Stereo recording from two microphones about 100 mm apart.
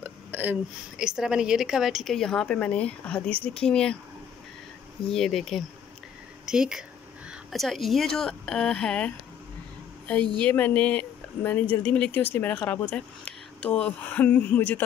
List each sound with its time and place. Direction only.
0.0 s hiccup: 15° right (ahead or behind)
0.9 s a woman's voice: 5° right (ahead or behind); by 3.9 s 10° left (ahead or behind)
5.1 s a woman's voice: centre (ahead or behind)